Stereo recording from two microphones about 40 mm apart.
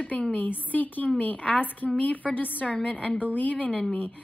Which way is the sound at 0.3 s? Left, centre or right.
Left.